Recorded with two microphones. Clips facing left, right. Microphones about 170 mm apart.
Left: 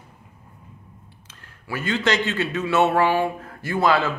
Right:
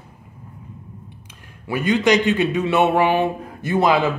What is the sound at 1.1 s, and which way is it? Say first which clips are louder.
A man's voice: right 6 dB; 15° right (ahead or behind).